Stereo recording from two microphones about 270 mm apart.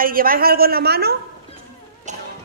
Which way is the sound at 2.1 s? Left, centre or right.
Right.